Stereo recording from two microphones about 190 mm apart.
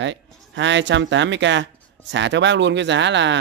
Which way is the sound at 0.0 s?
75° right (ahead or behind).